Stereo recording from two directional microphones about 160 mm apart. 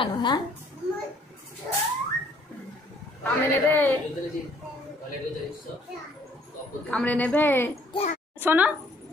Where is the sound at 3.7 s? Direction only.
10° left (ahead or behind).